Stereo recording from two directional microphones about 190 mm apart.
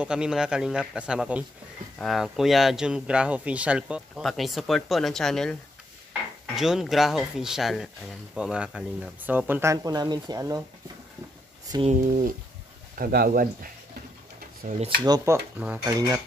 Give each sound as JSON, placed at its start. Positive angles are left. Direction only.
{"t": 0.0, "sound": "speech", "side_deg": -5}
{"t": 11.9, "sound": "speech", "side_deg": -45}
{"t": 15.0, "sound": "speech", "side_deg": -20}